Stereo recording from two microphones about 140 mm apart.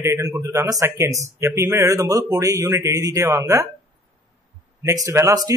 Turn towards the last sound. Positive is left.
turn(degrees=-25)  # may be behind; listen again after turning